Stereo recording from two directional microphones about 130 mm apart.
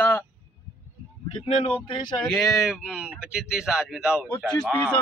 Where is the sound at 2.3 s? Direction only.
Centre (ahead or behind).